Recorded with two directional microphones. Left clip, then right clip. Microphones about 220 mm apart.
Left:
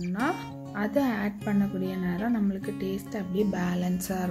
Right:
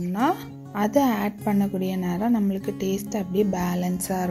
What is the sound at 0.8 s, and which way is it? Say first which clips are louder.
Speech: right 6 dB; 30° right (ahead or behind).